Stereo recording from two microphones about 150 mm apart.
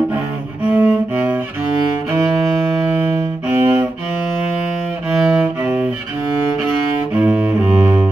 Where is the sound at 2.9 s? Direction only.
15° right (ahead or behind).